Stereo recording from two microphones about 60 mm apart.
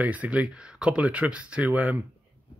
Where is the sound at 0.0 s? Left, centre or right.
Right.